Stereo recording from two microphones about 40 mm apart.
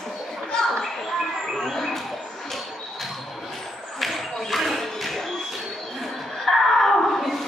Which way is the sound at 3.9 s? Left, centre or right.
Centre.